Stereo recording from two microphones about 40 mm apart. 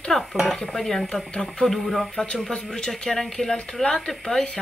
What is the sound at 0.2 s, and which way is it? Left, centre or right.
Speech, centre.